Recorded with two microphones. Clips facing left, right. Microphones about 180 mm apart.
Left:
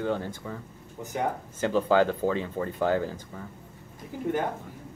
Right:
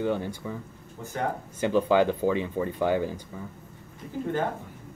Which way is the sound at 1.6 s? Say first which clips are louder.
Right 1 dB; 15° right (ahead or behind).